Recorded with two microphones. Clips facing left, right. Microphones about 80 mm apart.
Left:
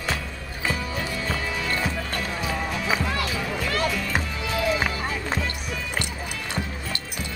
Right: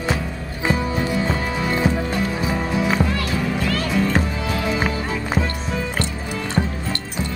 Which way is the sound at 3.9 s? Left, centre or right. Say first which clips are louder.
Right 8 dB; right.